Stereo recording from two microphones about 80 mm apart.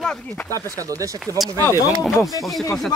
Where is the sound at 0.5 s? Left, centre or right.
Right.